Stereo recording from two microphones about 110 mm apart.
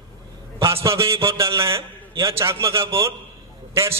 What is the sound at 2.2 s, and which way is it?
A man's voice, 25° right (ahead or behind).